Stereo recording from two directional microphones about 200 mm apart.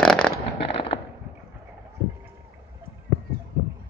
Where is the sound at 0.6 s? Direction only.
30° left (ahead or behind).